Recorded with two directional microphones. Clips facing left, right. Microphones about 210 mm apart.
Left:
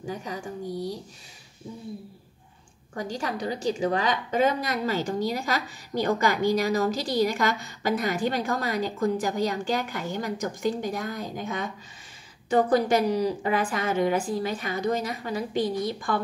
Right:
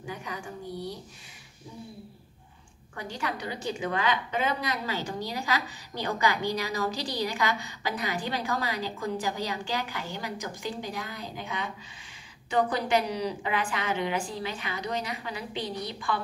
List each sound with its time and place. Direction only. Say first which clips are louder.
0.0 s a woman's voice: left 4 dB; 35° left (ahead or behind)
2.9 s a woman's voice: left 4 dB; 35° left (ahead or behind)